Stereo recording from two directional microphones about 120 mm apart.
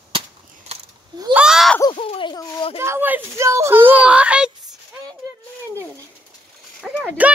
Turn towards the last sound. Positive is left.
turn(degrees=-10)  # may be behind; listen again after turning